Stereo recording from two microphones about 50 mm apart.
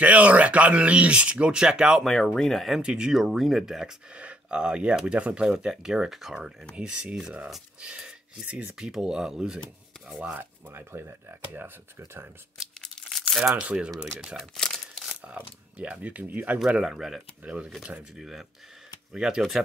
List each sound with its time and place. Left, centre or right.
0.0 s speech: right
2.1 s speech: centre
2.8 s speech: centre
3.1 s speech: centre
4.1 s speech: right
6.7 s speech: right
10.7 s speech: right
12.8 s crumpling: centre
13.6 s speech: centre
14.6 s crumpling: centre
15.8 s speech: right
16.5 s speech: centre